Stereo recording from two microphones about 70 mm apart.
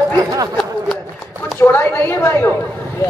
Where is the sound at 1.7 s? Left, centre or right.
Left.